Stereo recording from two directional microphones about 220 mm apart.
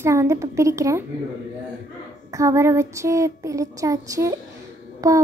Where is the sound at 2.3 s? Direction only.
15° right (ahead or behind).